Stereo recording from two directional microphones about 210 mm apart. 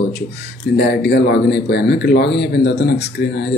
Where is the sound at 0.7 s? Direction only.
50° left (ahead or behind).